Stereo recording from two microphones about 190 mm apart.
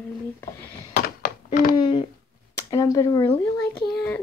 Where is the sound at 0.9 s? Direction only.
50° left (ahead or behind).